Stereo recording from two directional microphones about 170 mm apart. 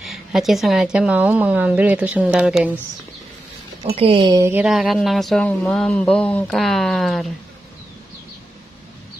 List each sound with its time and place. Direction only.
0.0 s speech: centre (ahead or behind)
3.9 s speech: 35° right (ahead or behind)
4.5 s a sound: 5° right (ahead or behind)